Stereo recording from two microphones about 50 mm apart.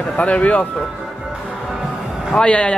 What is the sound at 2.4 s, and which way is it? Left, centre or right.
Speech, left.